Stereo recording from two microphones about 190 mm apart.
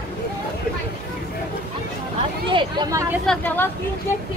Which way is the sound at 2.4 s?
25° right (ahead or behind).